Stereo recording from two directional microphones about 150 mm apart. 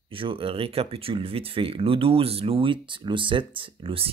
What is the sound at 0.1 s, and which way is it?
Speech, 35° right (ahead or behind).